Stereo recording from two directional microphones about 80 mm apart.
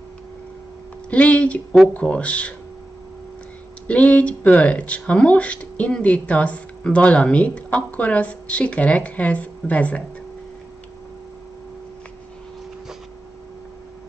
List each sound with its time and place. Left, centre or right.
1.1 s speech: centre
3.8 s speech: centre